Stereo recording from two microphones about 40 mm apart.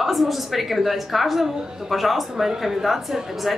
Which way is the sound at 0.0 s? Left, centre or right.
Centre.